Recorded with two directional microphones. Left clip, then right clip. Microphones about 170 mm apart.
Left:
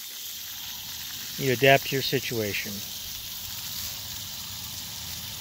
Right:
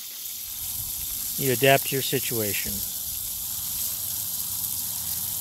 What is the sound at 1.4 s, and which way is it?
Speech, centre (ahead or behind).